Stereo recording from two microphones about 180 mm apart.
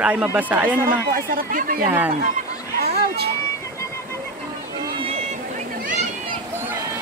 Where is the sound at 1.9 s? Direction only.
10° right (ahead or behind).